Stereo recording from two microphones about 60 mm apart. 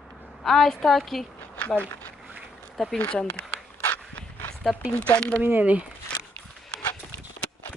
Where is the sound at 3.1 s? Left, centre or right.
Centre.